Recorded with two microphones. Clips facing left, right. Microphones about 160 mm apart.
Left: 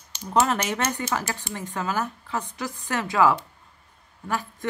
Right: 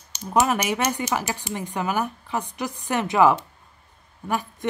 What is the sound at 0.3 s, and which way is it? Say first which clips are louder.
Speech: right 1 dB; 15° right (ahead or behind).